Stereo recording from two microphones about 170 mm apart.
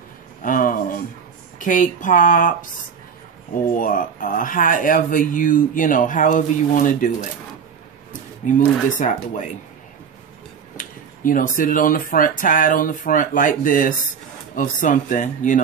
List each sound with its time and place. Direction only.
0.4 s a sound: 50° left (ahead or behind)
1.6 s speech: 50° left (ahead or behind)
3.6 s speech: 55° left (ahead or behind)
8.5 s speech: 50° left (ahead or behind)
10.8 s speech: 50° left (ahead or behind)